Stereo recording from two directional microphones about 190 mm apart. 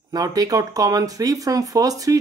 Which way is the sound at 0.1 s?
20° right (ahead or behind).